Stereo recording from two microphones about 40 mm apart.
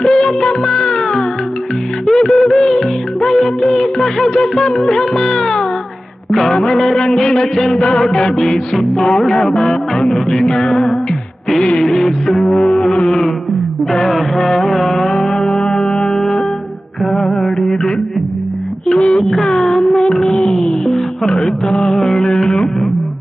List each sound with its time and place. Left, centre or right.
0.0 s music of bollywood: centre
2.0 s music: centre
5.4 s cat: centre
6.3 s music: centre
8.0 s music: centre
14.0 s music: centre
19.8 s child singing: centre
20.3 s music: centre